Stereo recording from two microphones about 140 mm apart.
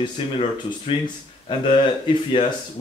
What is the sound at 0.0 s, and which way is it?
Speech, 35° left (ahead or behind).